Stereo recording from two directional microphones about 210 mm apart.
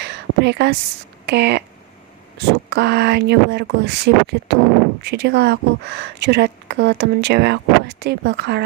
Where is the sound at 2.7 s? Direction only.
55° right (ahead or behind).